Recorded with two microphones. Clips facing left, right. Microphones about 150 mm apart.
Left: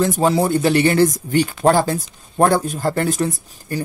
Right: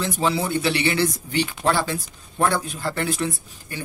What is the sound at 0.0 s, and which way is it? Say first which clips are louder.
Speech: left 7 dB; 45° left (ahead or behind).